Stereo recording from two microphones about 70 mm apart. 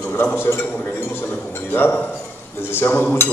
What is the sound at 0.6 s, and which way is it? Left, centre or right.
A man's voice, left.